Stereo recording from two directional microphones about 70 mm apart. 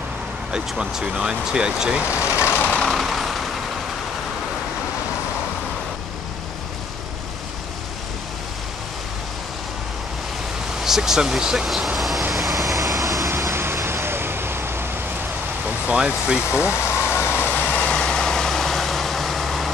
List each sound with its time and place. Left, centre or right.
0.5 s speech: centre
2.2 s vehicle: left
2.8 s vehicle: centre
10.8 s speech: centre
12.7 s vehicle: right
13.4 s vehicle: right
15.9 s speech: centre
16.9 s vehicle: left; by 19.7 s centre